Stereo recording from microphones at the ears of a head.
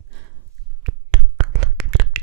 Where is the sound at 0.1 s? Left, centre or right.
Right.